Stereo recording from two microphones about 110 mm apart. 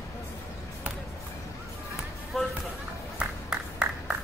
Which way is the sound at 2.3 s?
Centre (ahead or behind).